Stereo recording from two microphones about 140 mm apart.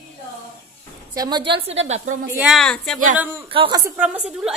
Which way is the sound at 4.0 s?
10° right (ahead or behind).